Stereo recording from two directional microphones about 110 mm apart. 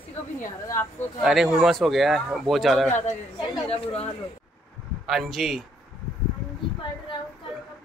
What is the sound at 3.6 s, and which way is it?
Speech, 65° left (ahead or behind).